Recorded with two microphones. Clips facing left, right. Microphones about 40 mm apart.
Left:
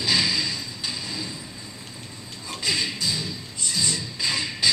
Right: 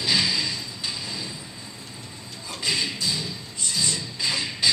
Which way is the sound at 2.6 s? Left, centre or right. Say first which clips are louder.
Even; centre.